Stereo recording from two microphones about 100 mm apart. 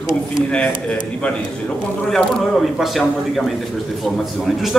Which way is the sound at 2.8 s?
Centre (ahead or behind).